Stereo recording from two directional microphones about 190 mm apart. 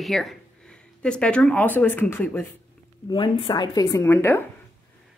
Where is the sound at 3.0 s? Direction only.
25° left (ahead or behind).